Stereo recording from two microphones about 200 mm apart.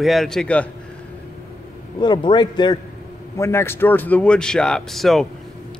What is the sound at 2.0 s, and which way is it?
A man's voice, 20° left (ahead or behind).